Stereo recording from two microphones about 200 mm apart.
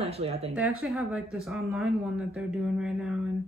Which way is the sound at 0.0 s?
30° right (ahead or behind).